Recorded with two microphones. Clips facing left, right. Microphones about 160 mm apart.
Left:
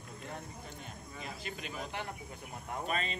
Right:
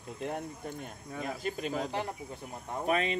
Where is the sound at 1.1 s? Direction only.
45° right (ahead or behind).